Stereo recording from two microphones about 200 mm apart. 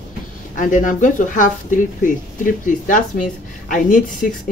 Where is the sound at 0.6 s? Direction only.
40° left (ahead or behind).